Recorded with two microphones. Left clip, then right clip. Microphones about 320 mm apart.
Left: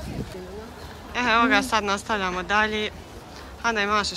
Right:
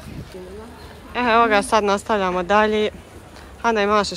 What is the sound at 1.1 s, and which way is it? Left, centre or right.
Speech, centre.